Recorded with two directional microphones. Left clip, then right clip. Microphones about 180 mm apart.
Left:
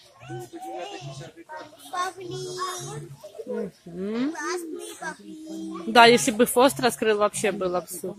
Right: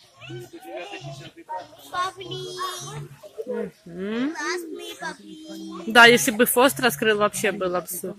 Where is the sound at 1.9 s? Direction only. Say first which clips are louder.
Right 2 dB; 60° left (ahead or behind).